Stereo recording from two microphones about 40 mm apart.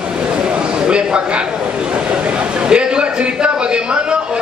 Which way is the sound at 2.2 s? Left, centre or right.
Right.